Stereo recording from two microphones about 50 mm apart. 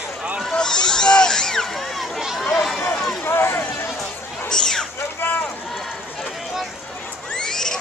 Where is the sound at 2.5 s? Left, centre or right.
Centre.